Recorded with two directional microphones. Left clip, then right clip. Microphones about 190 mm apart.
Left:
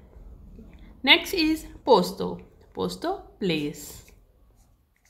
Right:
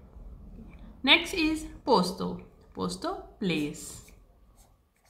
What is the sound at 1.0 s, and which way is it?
A woman's voice, 40° left (ahead or behind).